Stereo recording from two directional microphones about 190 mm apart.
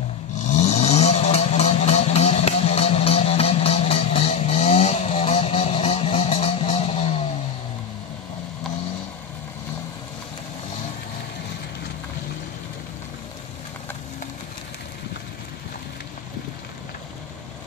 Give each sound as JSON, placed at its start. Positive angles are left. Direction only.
{"t": 0.4, "sound": "vehicle", "side_deg": 35}